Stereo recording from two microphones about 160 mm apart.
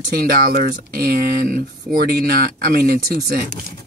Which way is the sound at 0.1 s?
70° right (ahead or behind).